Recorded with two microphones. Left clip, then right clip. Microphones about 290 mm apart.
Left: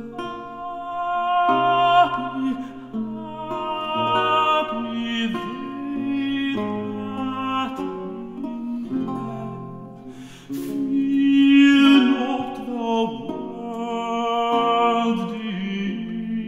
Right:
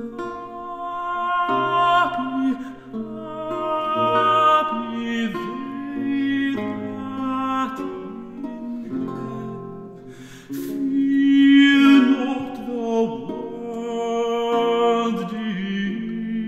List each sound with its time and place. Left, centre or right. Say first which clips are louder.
0.9 s music: left 2 dB; right
3.6 s music: right 3 dB; right
11.1 s mantra: right 1 dB; right
12.8 s music: right 1 dB; right